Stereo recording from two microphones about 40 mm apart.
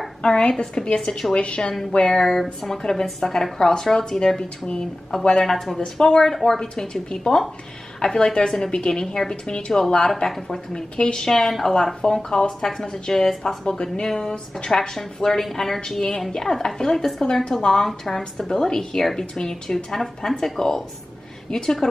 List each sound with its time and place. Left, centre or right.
0.2 s a woman's voice: left
1.3 s a woman's voice: left
1.7 s a woman's voice: centre
2.4 s a woman's voice: centre
5.2 s a woman's voice: centre
11.2 s a woman's voice: centre
15.8 s a woman's voice: centre
17.8 s a woman's voice: centre